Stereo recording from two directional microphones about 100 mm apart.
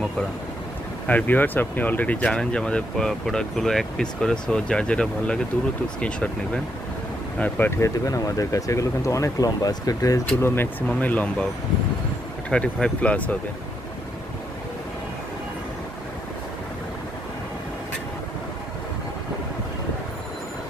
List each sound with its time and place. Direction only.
1.0 s speech: 15° left (ahead or behind); by 10.2 s 35° left (ahead or behind)
10.4 s speech: 20° left (ahead or behind)
12.4 s speech: 5° left (ahead or behind)